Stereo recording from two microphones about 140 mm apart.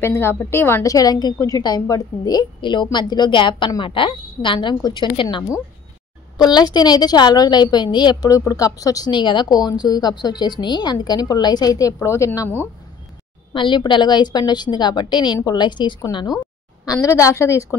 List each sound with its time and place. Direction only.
0.0 s a woman's voice: 20° left (ahead or behind)
13.5 s a woman's voice: 35° left (ahead or behind)
16.8 s a woman's voice: 20° left (ahead or behind)